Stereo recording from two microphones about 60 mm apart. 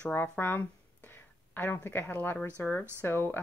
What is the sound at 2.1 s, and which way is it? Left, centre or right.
Speech, left.